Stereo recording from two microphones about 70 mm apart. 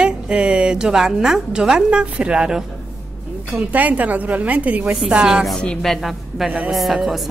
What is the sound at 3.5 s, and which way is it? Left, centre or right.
A woman's voice, right.